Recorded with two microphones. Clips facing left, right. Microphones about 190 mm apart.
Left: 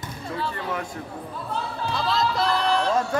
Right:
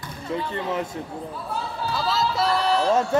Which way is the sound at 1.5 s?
5° right (ahead or behind).